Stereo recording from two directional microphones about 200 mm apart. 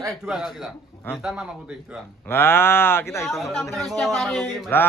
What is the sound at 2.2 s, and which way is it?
A man's voice, 10° left (ahead or behind).